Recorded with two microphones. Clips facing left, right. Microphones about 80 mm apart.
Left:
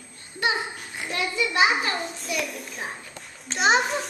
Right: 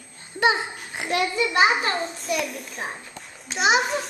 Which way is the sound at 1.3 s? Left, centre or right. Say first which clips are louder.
Right 1 dB; right.